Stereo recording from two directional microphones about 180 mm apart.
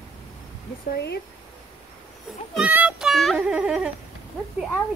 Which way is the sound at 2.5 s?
10° right (ahead or behind).